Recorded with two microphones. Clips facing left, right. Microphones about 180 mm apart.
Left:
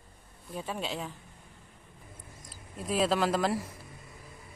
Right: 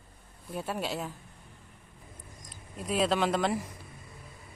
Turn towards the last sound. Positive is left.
turn(degrees=0)  # may be behind; listen again after turning